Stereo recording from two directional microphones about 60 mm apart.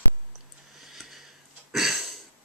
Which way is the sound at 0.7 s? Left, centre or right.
Centre.